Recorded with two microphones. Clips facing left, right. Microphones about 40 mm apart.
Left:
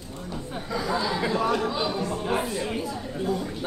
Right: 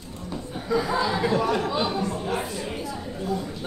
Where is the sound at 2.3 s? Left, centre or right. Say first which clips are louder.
Left 2 dB; centre.